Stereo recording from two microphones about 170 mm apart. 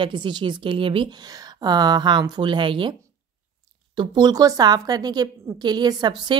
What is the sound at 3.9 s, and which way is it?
Speech, 25° right (ahead or behind).